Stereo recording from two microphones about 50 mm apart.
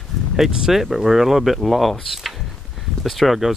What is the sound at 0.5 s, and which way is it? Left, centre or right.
Speech, centre.